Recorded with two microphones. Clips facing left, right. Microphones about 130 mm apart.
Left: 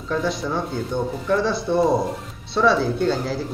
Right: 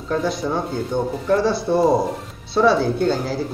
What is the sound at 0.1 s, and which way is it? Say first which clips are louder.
A man's voice: right 2 dB; centre (ahead or behind).